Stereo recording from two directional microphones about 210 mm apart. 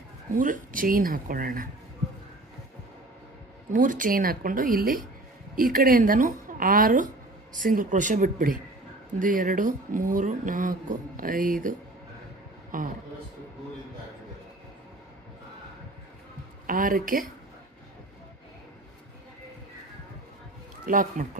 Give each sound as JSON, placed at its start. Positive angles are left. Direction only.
{"t": 0.3, "sound": "speech", "side_deg": -40}
{"t": 3.7, "sound": "speech", "side_deg": -40}
{"t": 12.7, "sound": "speech", "side_deg": -40}
{"t": 16.6, "sound": "speech", "side_deg": -40}
{"t": 20.8, "sound": "speech", "side_deg": -40}